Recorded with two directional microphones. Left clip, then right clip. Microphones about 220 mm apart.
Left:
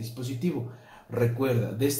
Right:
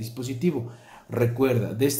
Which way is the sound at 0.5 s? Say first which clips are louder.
Right 5 dB; 50° right (ahead or behind).